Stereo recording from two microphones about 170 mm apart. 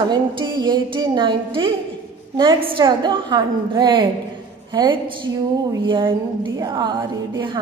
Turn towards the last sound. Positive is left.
turn(degrees=-25)  # may be behind; listen again after turning